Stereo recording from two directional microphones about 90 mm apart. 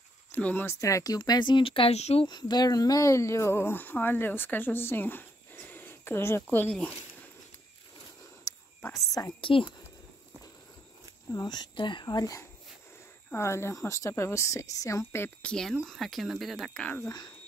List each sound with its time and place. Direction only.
0.3 s speech: 20° left (ahead or behind)
0.7 s speech: 35° left (ahead or behind); by 2.2 s 90° left
2.2 s speech: 50° left (ahead or behind); by 6.4 s 30° left (ahead or behind)
8.5 s whispering: 40° left (ahead or behind)
9.4 s speech: 75° left (ahead or behind)
11.3 s speech: 50° left (ahead or behind)
13.3 s speech: 30° left (ahead or behind)
15.4 s speech: 5° left (ahead or behind)
16.8 s speech: 20° left (ahead or behind)